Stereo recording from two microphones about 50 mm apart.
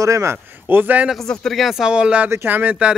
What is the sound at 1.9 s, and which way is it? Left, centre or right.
Speech, right.